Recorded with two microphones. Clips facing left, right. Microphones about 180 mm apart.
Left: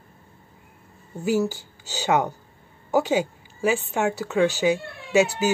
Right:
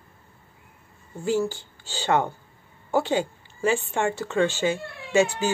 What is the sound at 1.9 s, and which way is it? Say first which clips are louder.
A woman's voice: left 1 dB; 10° left (ahead or behind).